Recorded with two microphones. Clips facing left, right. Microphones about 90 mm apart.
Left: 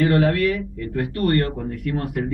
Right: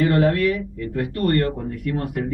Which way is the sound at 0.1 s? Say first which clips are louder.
Even; 30° right (ahead or behind).